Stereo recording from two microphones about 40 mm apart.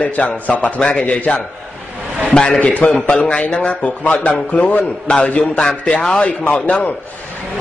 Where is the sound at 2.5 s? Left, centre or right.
Left.